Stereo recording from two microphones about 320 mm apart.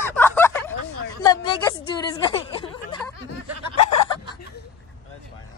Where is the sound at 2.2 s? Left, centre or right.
Centre.